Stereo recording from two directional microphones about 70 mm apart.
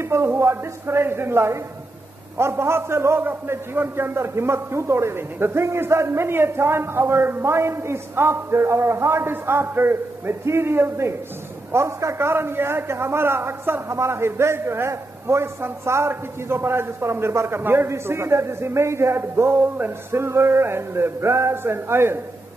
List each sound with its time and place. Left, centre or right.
0.0 s a man's voice: right